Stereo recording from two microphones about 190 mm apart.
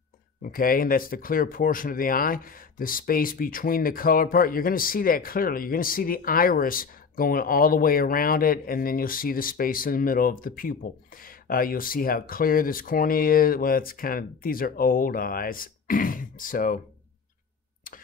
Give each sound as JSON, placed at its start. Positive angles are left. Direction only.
{"t": 0.4, "sound": "speech", "side_deg": 50}